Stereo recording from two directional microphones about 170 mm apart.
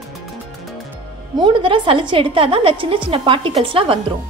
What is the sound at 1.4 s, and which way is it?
A woman's voice, 30° right (ahead or behind).